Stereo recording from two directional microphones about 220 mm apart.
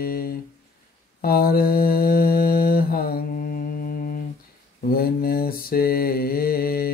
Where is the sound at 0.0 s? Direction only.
40° left (ahead or behind).